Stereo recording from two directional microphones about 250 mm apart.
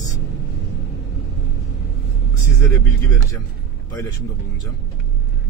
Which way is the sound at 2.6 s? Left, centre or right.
Centre.